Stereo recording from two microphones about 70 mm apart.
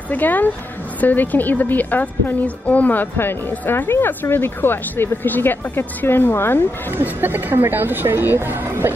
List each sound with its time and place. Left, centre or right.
0.1 s a woman's voice: left
7.0 s speech: right